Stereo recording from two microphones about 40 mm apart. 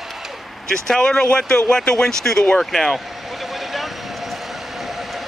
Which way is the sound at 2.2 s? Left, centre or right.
Centre.